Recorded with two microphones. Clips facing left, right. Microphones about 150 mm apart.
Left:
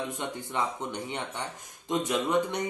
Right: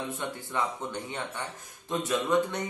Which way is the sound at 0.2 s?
15° left (ahead or behind).